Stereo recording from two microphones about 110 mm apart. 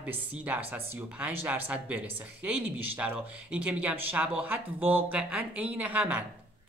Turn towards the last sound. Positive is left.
turn(degrees=-15)  # may be behind; listen again after turning